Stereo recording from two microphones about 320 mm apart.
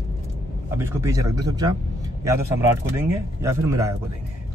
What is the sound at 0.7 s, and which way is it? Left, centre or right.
Speech, centre.